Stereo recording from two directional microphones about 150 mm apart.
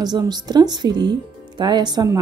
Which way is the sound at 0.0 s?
25° right (ahead or behind).